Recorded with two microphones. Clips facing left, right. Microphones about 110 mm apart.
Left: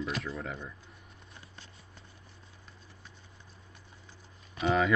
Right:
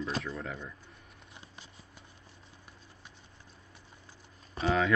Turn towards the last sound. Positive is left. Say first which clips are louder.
# left 1 dB
turn(degrees=5)  # may be behind; listen again after turning